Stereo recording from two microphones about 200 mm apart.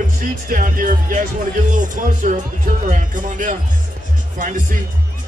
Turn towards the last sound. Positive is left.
turn(degrees=-40)  # may be behind; listen again after turning